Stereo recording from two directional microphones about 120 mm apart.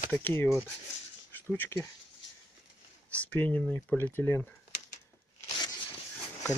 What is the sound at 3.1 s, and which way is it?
Speech, 15° left (ahead or behind).